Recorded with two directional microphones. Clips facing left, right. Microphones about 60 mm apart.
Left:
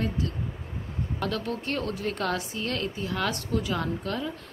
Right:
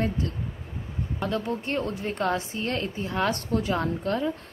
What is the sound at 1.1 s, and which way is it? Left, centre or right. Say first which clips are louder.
A woman's voice: right 2 dB; right.